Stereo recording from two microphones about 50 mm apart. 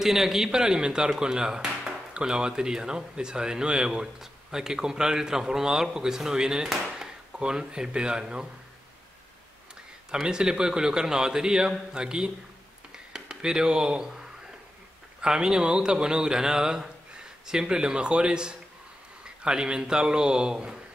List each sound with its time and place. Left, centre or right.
0.0 s speech: centre
10.1 s speech: centre
12.9 s a sound: centre
15.2 s speech: centre